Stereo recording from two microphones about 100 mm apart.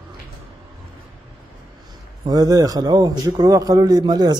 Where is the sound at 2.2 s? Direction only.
40° right (ahead or behind).